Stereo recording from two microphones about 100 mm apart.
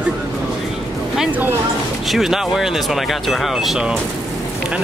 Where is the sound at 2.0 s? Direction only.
Centre (ahead or behind).